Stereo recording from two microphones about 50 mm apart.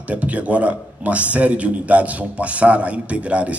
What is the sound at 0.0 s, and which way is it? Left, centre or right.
A man's voice, right.